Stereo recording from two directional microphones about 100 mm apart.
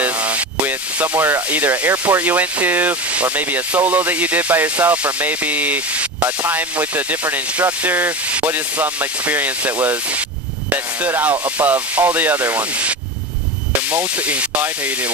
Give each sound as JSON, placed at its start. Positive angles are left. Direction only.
{"t": 0.0, "sound": "speech", "side_deg": -15}
{"t": 11.0, "sound": "speech", "side_deg": -20}
{"t": 13.9, "sound": "speech", "side_deg": -15}